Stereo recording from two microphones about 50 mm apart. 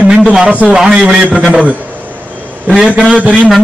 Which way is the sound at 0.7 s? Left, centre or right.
Centre.